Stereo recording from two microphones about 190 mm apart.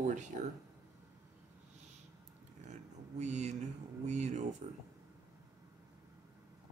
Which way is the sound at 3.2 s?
35° right (ahead or behind).